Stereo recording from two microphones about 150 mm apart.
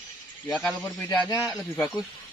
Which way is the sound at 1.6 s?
Centre (ahead or behind).